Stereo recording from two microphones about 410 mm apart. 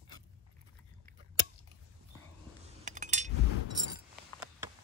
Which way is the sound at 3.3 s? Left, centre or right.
Left.